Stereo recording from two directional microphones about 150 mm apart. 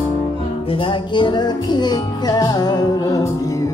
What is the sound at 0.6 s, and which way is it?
Music, 35° left (ahead or behind).